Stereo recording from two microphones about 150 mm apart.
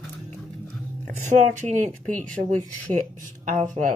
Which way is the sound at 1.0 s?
55° right (ahead or behind).